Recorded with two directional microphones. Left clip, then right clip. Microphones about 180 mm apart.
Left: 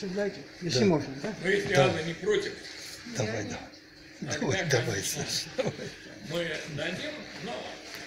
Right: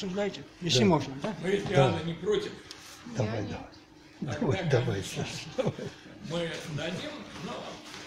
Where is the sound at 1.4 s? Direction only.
45° right (ahead or behind).